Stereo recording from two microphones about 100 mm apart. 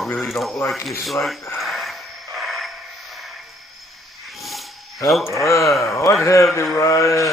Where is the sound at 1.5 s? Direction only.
Centre (ahead or behind).